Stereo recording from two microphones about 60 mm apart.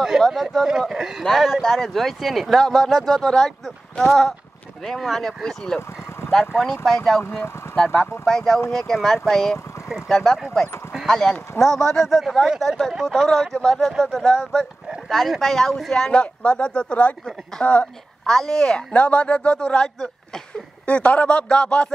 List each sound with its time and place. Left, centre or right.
0.3 s speech: centre
0.7 s speech: centre
7.2 s speech: left
7.7 s a man's voice: centre
14.2 s a man's voice: centre
15.0 s a man's voice: centre; by 17.8 s left
18.2 s a man's voice: centre